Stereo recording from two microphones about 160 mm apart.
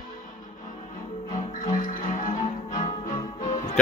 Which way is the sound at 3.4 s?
45° left (ahead or behind).